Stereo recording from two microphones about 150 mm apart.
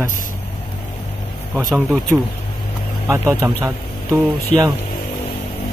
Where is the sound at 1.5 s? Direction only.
5° right (ahead or behind).